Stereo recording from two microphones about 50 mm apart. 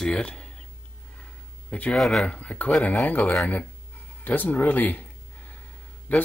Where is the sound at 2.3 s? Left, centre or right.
Left.